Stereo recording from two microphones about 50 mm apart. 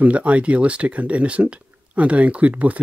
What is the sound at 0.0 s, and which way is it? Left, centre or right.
Speech, right.